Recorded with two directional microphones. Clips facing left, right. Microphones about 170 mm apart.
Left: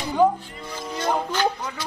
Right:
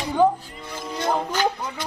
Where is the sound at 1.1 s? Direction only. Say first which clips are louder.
Even; 15° right (ahead or behind).